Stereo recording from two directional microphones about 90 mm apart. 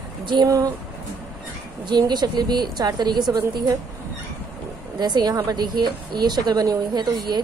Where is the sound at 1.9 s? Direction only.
55° right (ahead or behind).